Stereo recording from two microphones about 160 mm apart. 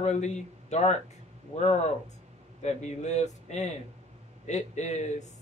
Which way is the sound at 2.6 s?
45° left (ahead or behind).